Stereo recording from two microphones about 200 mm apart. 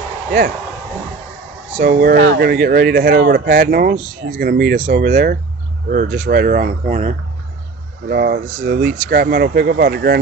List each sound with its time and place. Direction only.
1.8 s speech: 50° right (ahead or behind)